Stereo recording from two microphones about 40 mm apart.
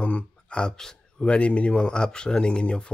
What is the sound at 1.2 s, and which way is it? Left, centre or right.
Speech, left.